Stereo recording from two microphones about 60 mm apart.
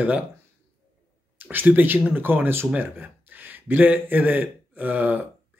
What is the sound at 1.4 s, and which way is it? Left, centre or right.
Speech, right.